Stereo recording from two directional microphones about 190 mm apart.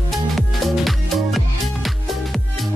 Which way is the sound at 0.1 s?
Centre (ahead or behind).